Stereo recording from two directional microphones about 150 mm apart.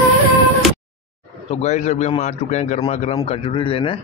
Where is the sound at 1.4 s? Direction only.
50° left (ahead or behind).